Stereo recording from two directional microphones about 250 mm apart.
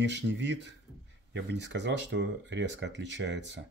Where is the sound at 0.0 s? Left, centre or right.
Right.